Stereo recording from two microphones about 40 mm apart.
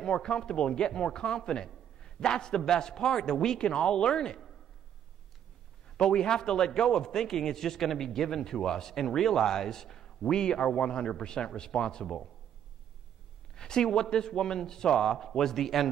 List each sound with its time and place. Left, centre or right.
0.0 s a man's voice: centre
5.9 s a man's voice: centre
13.6 s a man's voice: centre